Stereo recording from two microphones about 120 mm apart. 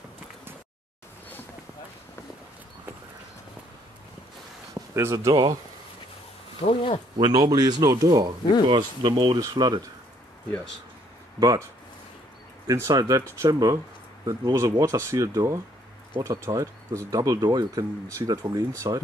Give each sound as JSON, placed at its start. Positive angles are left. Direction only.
{"t": 4.7, "sound": "speech", "side_deg": -25}
{"t": 5.3, "sound": "speech", "side_deg": -40}
{"t": 6.6, "sound": "speech", "side_deg": 50}
{"t": 7.2, "sound": "speech", "side_deg": -35}
{"t": 11.3, "sound": "speech", "side_deg": -30}
{"t": 12.6, "sound": "speech", "side_deg": -25}